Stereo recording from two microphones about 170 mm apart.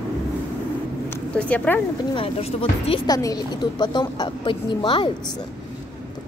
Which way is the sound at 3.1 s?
20° left (ahead or behind).